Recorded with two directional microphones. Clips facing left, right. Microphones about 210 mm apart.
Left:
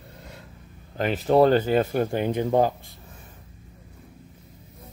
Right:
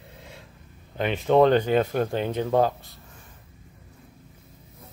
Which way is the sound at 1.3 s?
5° left (ahead or behind).